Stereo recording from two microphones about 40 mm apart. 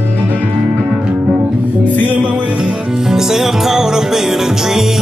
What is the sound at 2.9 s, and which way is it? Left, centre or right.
Music, centre.